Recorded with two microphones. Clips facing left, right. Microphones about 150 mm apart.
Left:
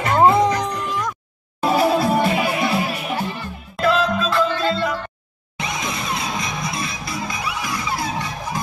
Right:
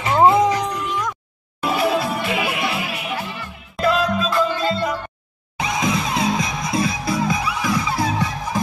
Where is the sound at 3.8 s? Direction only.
15° right (ahead or behind).